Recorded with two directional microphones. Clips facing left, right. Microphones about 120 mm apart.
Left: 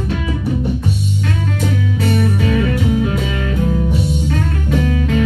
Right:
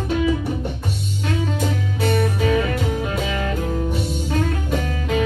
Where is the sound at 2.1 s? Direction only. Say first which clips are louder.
Left 1 dB; centre (ahead or behind).